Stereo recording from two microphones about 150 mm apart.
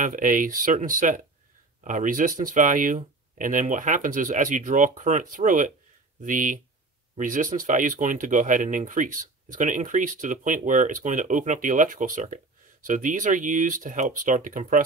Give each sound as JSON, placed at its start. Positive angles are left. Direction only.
{"t": 0.0, "sound": "speech", "side_deg": -60}